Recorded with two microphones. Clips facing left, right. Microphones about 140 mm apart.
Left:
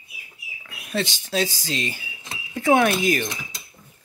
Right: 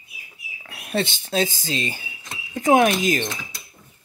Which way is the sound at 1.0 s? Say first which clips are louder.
Even; 55° right (ahead or behind).